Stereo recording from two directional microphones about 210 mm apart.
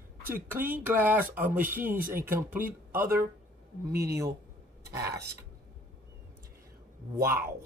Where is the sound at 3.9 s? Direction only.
15° right (ahead or behind).